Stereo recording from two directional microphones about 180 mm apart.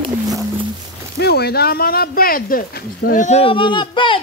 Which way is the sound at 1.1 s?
65° left (ahead or behind).